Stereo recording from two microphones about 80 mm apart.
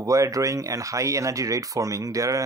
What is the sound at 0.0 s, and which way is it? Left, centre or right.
Speech, right.